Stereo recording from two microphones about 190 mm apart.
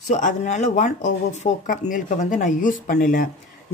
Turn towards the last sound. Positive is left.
turn(degrees=45)  # may be behind; listen again after turning